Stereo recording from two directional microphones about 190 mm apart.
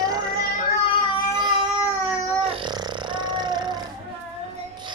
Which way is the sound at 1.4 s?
25° right (ahead or behind).